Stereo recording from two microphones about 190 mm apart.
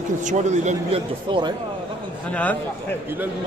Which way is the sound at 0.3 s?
40° right (ahead or behind).